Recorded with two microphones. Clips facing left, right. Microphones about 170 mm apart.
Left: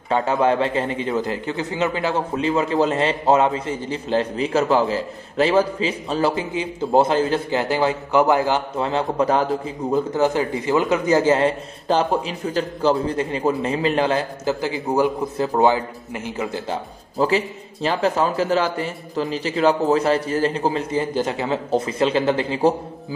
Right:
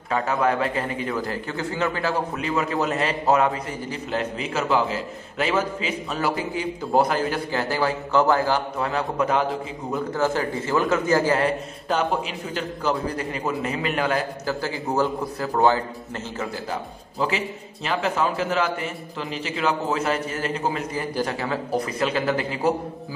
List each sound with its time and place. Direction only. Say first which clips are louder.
0.1 s a man's voice: left 4 dB; 25° left (ahead or behind)
17.2 s a man's voice: left 6 dB; 40° left (ahead or behind)